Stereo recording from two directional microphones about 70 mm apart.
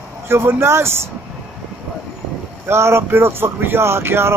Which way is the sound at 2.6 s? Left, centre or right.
Right.